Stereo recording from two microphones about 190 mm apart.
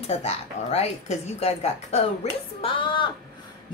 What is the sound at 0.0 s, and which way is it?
Speech, 35° left (ahead or behind).